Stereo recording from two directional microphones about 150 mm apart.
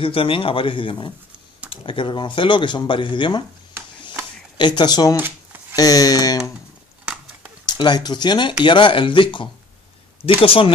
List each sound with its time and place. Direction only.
0.0 s speech: 35° left (ahead or behind)
4.6 s speech: 30° left (ahead or behind)
5.1 s shuffling cards: 15° right (ahead or behind)
5.8 s a sound: 25° left (ahead or behind)
7.1 s horse: 5° right (ahead or behind)
7.6 s speech: 30° left (ahead or behind)